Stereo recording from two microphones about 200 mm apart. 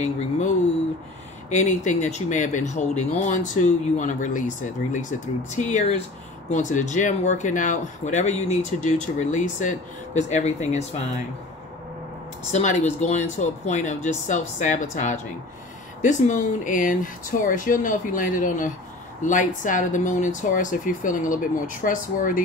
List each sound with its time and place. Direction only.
1.5 s speech: 35° left (ahead or behind)
12.4 s speech: 35° left (ahead or behind)